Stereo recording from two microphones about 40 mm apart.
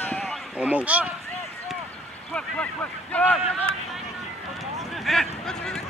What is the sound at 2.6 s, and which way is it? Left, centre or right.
Speech, left.